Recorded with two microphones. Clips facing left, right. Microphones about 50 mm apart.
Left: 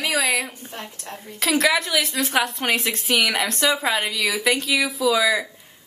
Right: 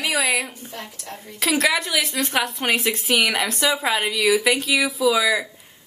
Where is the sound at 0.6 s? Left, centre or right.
Left.